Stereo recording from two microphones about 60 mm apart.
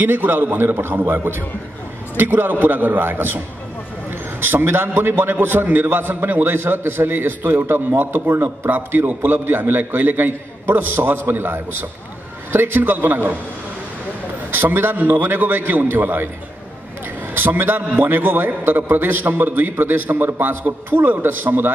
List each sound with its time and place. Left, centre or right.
0.0 s a man's voice: right
14.5 s a man's voice: right
17.3 s a man's voice: right